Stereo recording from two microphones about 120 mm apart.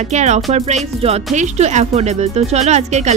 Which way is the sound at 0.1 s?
70° right (ahead or behind).